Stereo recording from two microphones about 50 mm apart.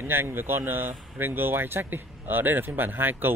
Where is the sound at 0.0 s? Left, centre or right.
Right.